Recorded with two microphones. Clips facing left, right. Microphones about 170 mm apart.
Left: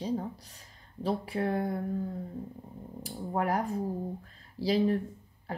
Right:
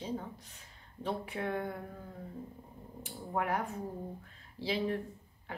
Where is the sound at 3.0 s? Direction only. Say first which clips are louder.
Left 4 dB; 35° left (ahead or behind).